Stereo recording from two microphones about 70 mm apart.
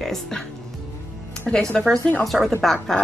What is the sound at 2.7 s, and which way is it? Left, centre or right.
Speech, centre.